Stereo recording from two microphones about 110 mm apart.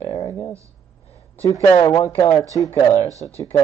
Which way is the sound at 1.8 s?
35° left (ahead or behind).